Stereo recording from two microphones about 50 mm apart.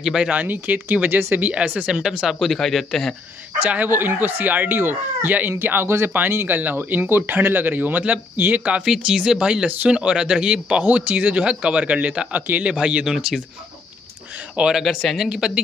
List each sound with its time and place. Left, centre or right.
0.0 s speech: centre
0.3 s speech: right
1.9 s speech: centre
2.4 s a man's voice: centre
3.6 s speech: right
3.9 s speech: right
6.3 s speech: right
8.6 s speech: centre
10.8 s speech: right
12.7 s speech: centre
14.6 s speech: right